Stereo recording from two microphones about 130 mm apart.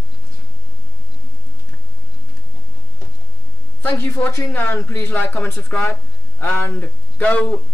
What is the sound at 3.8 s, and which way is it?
Speech, 15° left (ahead or behind).